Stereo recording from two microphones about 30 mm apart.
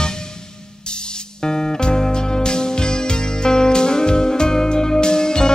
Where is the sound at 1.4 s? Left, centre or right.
Left.